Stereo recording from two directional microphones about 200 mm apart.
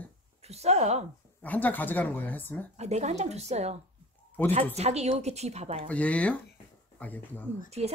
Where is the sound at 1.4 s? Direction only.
10° left (ahead or behind).